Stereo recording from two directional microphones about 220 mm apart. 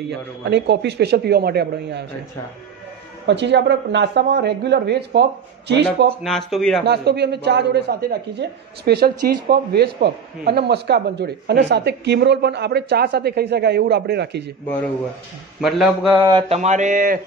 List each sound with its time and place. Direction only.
0.1 s speech: 50° right (ahead or behind)
3.3 s speech: 50° right (ahead or behind)
6.2 s speech: centre (ahead or behind)
6.9 s speech: 50° right (ahead or behind)
15.6 s speech: centre (ahead or behind)
16.3 s mantra: 25° right (ahead or behind)